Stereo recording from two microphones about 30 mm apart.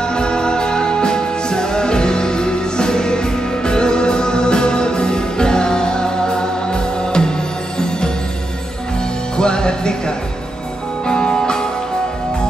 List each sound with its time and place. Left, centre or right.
0.0 s music: left
9.4 s music: left